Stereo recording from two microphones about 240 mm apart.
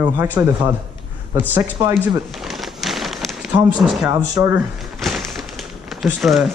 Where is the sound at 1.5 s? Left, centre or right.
Centre.